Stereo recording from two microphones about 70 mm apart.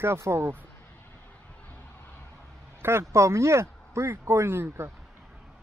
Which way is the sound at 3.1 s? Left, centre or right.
Right.